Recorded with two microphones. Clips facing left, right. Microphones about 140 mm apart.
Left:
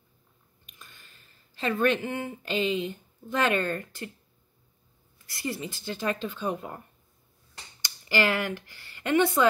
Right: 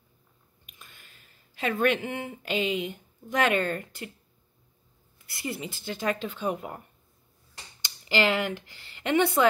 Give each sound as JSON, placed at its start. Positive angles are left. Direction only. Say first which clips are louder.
{"t": 0.7, "sound": "a sound", "louder": "left 1 dB", "side_deg": -10}
{"t": 2.0, "sound": "speech", "louder": "left 1 dB", "side_deg": -10}
{"t": 5.3, "sound": "speech", "louder": "left 1 dB", "side_deg": -15}
{"t": 7.8, "sound": "speech", "louder": "right 1 dB", "side_deg": -20}